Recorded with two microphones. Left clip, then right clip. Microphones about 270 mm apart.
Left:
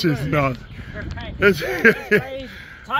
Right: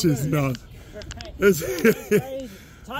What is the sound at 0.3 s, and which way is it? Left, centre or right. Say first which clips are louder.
A man's voice: left 5 dB; centre.